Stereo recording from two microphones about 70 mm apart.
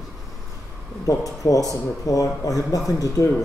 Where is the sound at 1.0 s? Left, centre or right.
Left.